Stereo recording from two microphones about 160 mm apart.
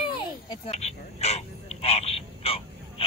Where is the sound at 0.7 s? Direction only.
45° left (ahead or behind).